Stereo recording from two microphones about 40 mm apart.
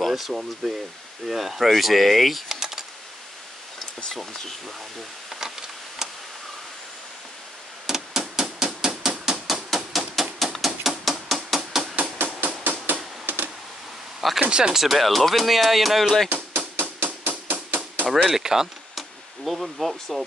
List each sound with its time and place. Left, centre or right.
0.0 s speech: centre
4.3 s speech: centre
5.3 s a sound: centre
7.8 s a sound: centre
9.8 s hammer: centre
12.2 s hammer: right
13.2 s a sound: right
14.5 s speech: centre
16.3 s hammer: right
18.0 s speech: centre